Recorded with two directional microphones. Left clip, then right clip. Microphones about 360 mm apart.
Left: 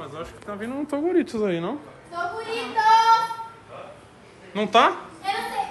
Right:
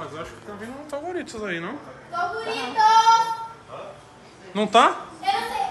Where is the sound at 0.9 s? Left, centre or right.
Centre.